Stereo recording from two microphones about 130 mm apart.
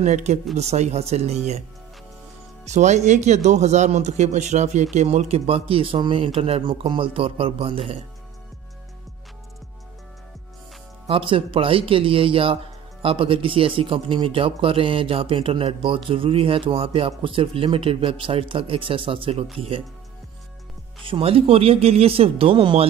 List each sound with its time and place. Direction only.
0.0 s speech: 60° right (ahead or behind)
2.6 s speech: 65° right (ahead or behind); by 8.0 s 45° right (ahead or behind)
11.1 s speech: 40° right (ahead or behind)
21.0 s speech: 45° right (ahead or behind)